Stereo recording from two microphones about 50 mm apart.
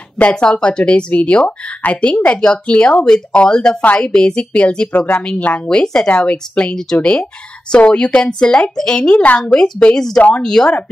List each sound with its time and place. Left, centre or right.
0.2 s a woman's voice: left